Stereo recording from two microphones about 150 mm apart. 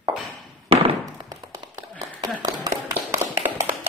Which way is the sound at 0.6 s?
35° right (ahead or behind).